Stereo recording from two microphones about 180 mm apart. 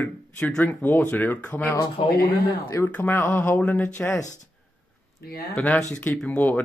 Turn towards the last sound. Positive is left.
turn(degrees=10)  # may be behind; listen again after turning